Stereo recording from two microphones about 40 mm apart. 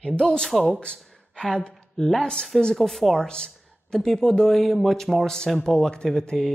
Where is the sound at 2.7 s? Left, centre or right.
Centre.